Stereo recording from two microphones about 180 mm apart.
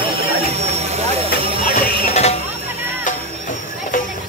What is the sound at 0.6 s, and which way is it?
Vehicle, 35° right (ahead or behind).